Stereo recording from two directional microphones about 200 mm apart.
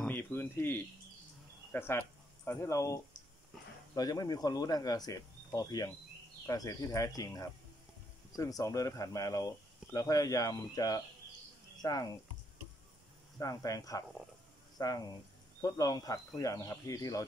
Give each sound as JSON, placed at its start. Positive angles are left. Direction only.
{"t": 0.0, "sound": "a sound", "side_deg": 10}
{"t": 1.7, "sound": "speech", "side_deg": 10}
{"t": 13.4, "sound": "speech", "side_deg": 15}